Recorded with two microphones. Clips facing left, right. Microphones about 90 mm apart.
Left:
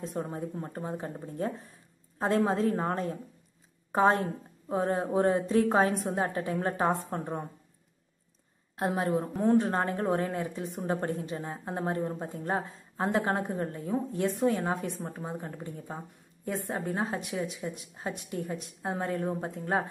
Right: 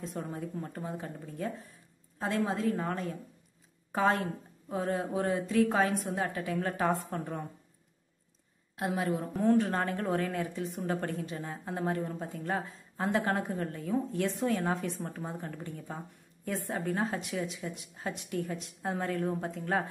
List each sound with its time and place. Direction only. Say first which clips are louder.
0.1 s a woman's voice: left 3 dB; 30° left (ahead or behind)
8.7 s a woman's voice: left 3 dB; 35° left (ahead or behind)